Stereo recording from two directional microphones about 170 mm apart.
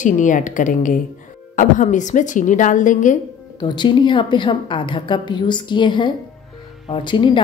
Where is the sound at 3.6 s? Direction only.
25° left (ahead or behind).